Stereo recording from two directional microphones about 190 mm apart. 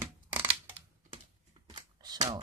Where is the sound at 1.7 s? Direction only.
20° right (ahead or behind).